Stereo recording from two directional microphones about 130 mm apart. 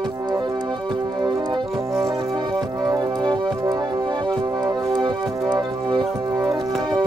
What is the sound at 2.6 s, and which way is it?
Music, 35° right (ahead or behind).